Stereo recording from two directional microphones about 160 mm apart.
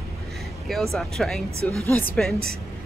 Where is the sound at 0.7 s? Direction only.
Centre (ahead or behind).